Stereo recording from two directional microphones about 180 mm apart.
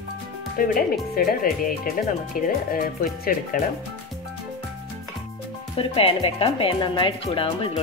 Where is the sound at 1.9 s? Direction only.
50° left (ahead or behind).